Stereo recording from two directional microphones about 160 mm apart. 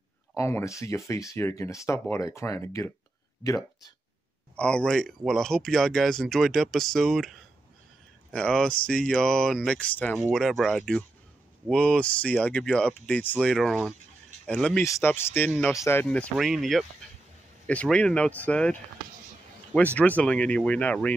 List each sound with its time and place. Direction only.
0.4 s speech: 20° left (ahead or behind)
4.6 s speech: 5° left (ahead or behind)